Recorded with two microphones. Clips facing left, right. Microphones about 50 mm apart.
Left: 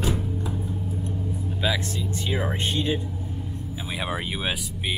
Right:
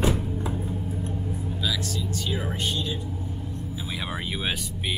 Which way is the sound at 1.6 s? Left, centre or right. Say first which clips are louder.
Left 4 dB; left.